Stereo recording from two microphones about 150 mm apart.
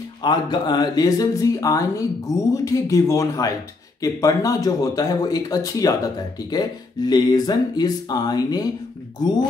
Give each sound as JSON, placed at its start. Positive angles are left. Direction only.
{"t": 0.2, "sound": "speech", "side_deg": 30}